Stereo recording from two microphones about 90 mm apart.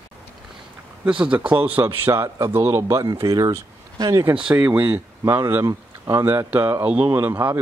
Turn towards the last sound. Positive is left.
turn(degrees=-25)  # may be behind; listen again after turning